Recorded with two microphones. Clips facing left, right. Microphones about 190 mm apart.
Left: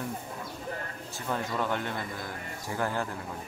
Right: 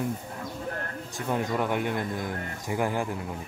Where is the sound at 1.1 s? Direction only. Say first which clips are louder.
Right 4 dB; 15° right (ahead or behind).